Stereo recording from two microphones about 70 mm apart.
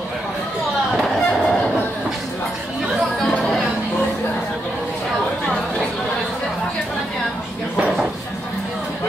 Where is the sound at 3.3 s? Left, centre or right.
Centre.